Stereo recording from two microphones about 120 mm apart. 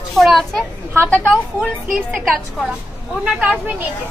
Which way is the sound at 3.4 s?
15° right (ahead or behind).